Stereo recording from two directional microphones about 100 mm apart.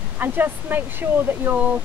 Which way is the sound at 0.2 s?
20° right (ahead or behind).